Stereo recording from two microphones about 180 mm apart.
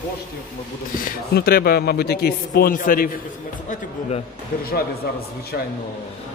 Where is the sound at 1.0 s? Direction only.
55° left (ahead or behind).